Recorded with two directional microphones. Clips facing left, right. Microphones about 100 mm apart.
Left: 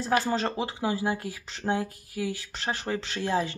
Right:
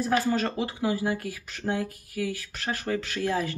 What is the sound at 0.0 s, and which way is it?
Speech, 25° left (ahead or behind).